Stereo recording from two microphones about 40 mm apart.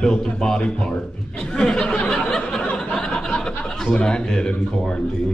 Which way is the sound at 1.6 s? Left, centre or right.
Centre.